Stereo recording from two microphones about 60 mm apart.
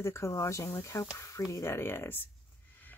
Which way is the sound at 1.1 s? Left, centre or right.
Left.